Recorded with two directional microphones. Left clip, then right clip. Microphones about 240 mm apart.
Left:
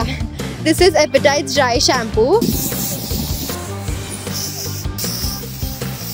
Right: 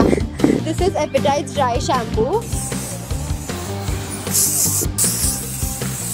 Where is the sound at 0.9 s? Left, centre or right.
Left.